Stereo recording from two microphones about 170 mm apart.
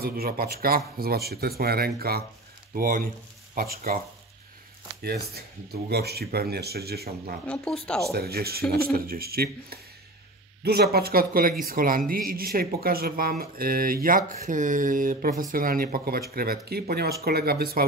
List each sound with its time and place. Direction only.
0.0 s speech: 65° right (ahead or behind)
5.3 s speech: 70° right (ahead or behind)
7.4 s speech: 5° left (ahead or behind)
8.1 s speech: 65° right (ahead or behind)